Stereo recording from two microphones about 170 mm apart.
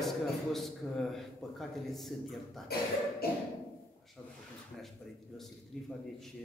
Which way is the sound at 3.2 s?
65° left (ahead or behind).